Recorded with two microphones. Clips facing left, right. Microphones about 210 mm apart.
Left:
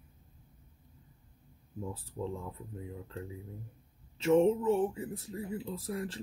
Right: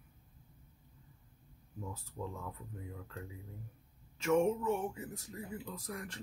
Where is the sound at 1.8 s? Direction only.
30° left (ahead or behind).